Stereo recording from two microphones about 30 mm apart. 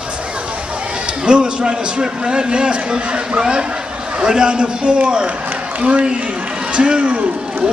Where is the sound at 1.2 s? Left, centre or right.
Right.